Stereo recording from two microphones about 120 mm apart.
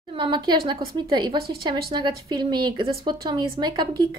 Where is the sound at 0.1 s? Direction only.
40° right (ahead or behind).